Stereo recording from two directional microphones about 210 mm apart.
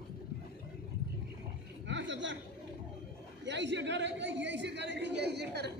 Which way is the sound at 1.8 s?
60° right (ahead or behind).